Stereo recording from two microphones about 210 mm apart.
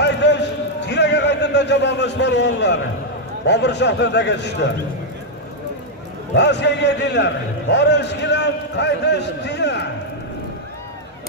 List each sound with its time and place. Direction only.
0.0 s a sound: 55° left (ahead or behind)
3.4 s a man's voice: 55° left (ahead or behind)
6.3 s a man's voice: 55° left (ahead or behind)